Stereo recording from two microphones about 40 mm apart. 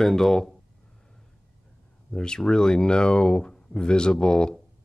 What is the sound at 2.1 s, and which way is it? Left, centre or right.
Speech, centre.